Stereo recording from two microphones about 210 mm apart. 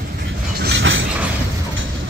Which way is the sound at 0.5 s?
55° right (ahead or behind).